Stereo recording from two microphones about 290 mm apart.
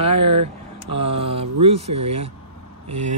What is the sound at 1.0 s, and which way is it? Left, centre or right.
Speech, centre.